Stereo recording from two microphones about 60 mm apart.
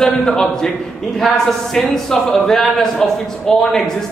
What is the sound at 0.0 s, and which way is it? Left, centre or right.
Speech, centre.